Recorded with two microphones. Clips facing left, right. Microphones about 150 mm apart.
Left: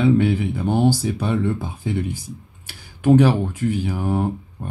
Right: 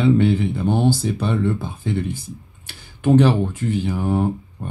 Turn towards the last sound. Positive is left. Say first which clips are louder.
# right 2 dB
turn(degrees=10)  # may be behind; listen again after turning